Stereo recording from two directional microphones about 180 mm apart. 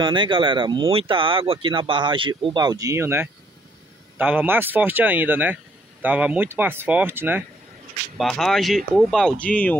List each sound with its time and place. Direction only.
0.0 s speech: 25° right (ahead or behind)
8.2 s speech: centre (ahead or behind)